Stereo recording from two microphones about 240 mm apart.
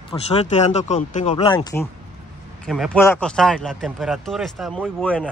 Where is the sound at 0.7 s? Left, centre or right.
Left.